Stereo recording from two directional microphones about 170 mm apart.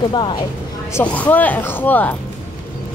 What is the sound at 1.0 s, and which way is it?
Speech, 10° left (ahead or behind).